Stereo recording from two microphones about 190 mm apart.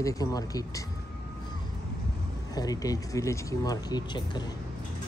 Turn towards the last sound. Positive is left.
turn(degrees=25)  # may be behind; listen again after turning